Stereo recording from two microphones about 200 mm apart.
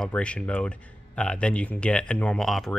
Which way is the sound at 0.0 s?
5° left (ahead or behind).